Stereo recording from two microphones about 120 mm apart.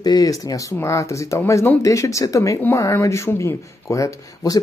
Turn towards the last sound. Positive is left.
turn(degrees=30)  # may be behind; listen again after turning